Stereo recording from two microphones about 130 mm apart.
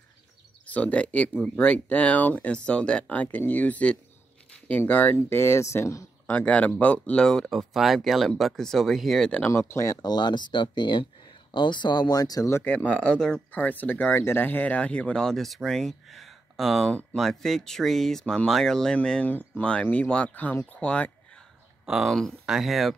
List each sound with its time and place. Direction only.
0.7 s speech: 10° left (ahead or behind)
9.6 s speech: 20° left (ahead or behind)
10.0 s speech: 35° left (ahead or behind); by 21.5 s 10° left (ahead or behind)
21.8 s speech: centre (ahead or behind)